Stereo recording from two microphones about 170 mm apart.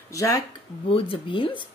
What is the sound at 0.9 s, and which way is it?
Speech, 30° left (ahead or behind).